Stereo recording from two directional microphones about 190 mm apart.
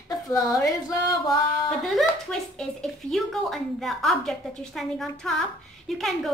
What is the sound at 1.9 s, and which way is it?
Speech, centre (ahead or behind).